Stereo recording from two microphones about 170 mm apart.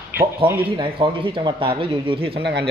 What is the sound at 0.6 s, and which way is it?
Speech, 30° right (ahead or behind).